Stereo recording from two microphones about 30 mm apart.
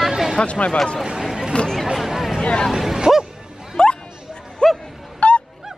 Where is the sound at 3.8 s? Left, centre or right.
Left.